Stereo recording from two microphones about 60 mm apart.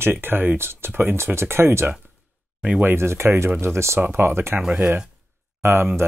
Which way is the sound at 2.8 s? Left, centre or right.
Right.